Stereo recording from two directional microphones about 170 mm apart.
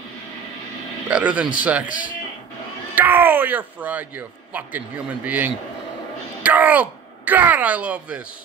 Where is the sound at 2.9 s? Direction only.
10° right (ahead or behind).